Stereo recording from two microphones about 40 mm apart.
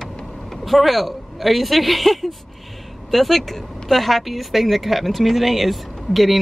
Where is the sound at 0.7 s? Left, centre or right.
Centre.